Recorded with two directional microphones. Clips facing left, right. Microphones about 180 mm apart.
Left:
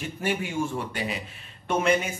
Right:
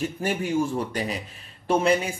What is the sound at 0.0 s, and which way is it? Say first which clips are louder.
Speech: right 2 dB; 40° right (ahead or behind).